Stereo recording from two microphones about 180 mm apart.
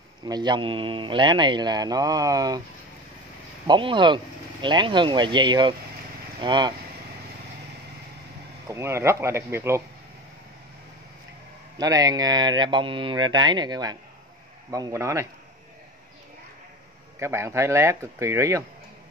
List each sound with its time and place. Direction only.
0.2 s speech: 25° right (ahead or behind)
3.6 s speech: 25° right (ahead or behind)
8.6 s speech: 15° right (ahead or behind)
11.8 s speech: 20° right (ahead or behind)
17.2 s speech: 15° right (ahead or behind)